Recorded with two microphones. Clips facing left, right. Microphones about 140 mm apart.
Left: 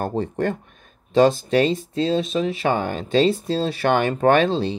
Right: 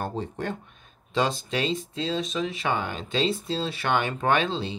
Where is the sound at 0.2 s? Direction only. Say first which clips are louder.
Left 8 dB; 55° left (ahead or behind).